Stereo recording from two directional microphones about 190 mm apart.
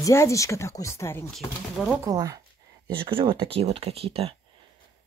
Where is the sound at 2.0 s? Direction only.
20° right (ahead or behind).